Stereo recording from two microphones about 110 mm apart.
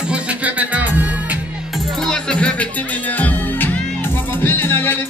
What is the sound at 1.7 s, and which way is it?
Music, centre (ahead or behind).